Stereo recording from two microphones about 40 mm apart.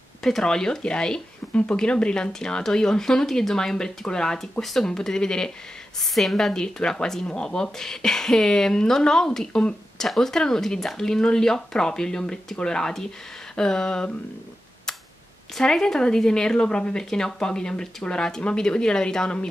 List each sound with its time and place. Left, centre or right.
0.2 s speech: centre
5.9 s speech: centre; by 10.0 s left
10.0 s speech: centre
15.5 s speech: centre